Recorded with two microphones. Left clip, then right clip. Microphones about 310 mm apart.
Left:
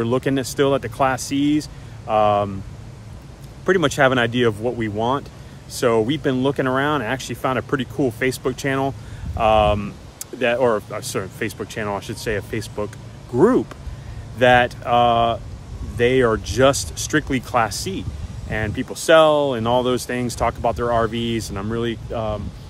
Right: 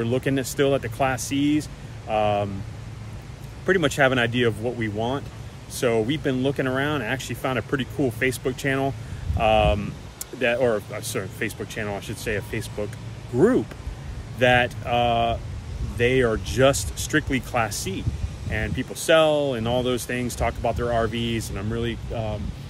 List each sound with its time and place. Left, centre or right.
0.0 s speech: centre
3.6 s speech: centre